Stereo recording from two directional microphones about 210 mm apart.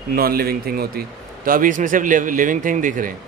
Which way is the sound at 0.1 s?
45° right (ahead or behind).